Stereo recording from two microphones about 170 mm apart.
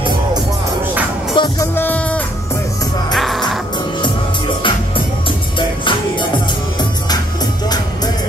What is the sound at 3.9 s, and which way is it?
Music, 30° left (ahead or behind).